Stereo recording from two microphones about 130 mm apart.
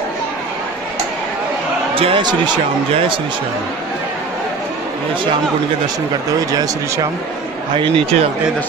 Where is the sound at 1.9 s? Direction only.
40° right (ahead or behind).